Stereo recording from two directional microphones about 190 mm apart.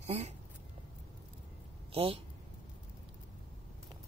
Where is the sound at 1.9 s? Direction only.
30° right (ahead or behind).